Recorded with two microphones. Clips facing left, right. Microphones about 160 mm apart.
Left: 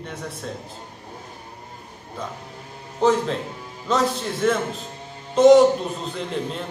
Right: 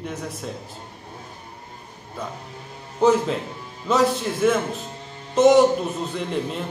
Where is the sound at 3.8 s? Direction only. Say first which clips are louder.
Right 2 dB; 5° right (ahead or behind).